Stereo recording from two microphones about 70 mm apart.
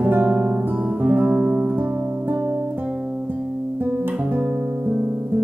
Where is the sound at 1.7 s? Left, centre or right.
Right.